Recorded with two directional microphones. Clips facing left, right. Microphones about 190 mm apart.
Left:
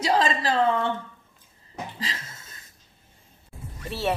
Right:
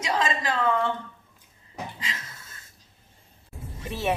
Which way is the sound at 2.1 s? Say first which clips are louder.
Even; 35° left (ahead or behind).